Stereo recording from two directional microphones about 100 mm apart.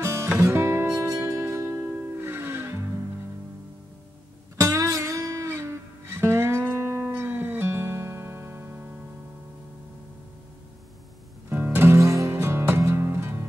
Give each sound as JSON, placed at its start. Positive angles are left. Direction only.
{"t": 0.0, "sound": "music", "side_deg": -30}
{"t": 4.6, "sound": "music", "side_deg": -30}
{"t": 11.4, "sound": "music", "side_deg": -20}